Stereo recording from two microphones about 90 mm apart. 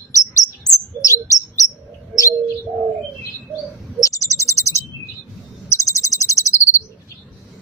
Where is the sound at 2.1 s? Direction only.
5° right (ahead or behind).